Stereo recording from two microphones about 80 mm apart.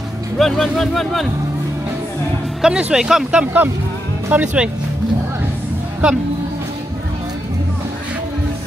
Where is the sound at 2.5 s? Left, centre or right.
Centre.